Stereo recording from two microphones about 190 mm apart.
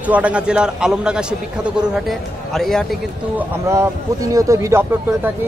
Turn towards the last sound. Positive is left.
turn(degrees=-10)  # may be behind; listen again after turning